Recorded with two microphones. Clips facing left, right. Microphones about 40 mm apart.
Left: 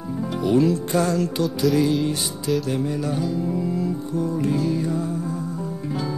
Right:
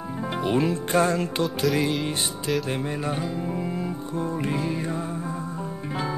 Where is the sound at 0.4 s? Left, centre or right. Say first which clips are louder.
Left 5 dB; right.